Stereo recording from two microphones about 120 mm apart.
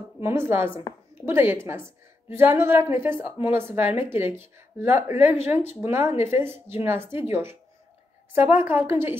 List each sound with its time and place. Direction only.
0.2 s a woman's voice: 20° right (ahead or behind)